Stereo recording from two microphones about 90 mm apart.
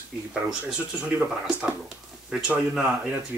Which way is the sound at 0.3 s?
10° right (ahead or behind).